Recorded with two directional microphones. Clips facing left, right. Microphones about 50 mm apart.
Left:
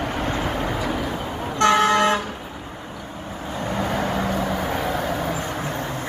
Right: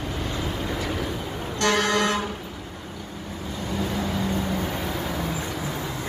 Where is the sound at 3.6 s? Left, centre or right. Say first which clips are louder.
Left 4 dB; left.